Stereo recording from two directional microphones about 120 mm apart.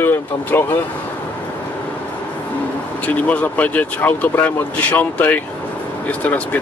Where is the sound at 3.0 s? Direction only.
10° left (ahead or behind).